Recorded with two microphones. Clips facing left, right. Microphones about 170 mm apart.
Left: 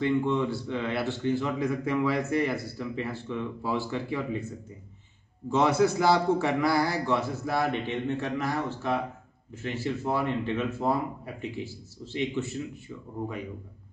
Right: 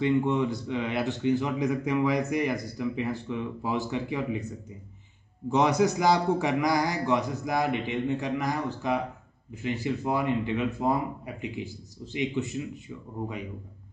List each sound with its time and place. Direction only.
0.0 s speech: 15° right (ahead or behind)
5.5 s speech: 15° right (ahead or behind)